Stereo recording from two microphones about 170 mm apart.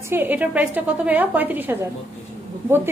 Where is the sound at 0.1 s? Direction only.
10° right (ahead or behind).